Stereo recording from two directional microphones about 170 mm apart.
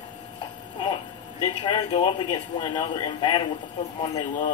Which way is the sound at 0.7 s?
30° left (ahead or behind).